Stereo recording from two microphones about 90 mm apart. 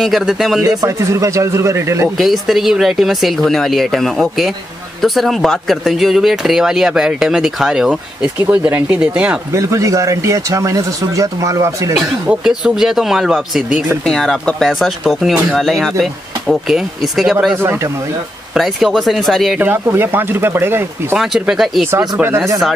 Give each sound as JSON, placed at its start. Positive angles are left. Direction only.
{"t": 0.0, "sound": "speech", "side_deg": 0}
{"t": 0.6, "sound": "speech", "side_deg": -35}
{"t": 2.1, "sound": "speech", "side_deg": 0}
{"t": 8.4, "sound": "speech", "side_deg": -20}
{"t": 9.5, "sound": "speech", "side_deg": -40}
{"t": 12.3, "sound": "speech", "side_deg": -5}
{"t": 19.6, "sound": "speech", "side_deg": -25}
{"t": 21.2, "sound": "speech", "side_deg": -5}